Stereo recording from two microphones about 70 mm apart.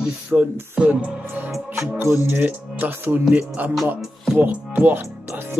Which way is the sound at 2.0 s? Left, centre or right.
Right.